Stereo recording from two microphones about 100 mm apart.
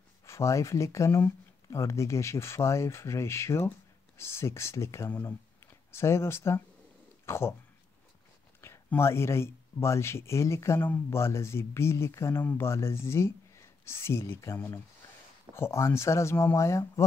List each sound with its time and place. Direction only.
0.2 s speech: 30° left (ahead or behind)
8.5 s speech: 25° left (ahead or behind)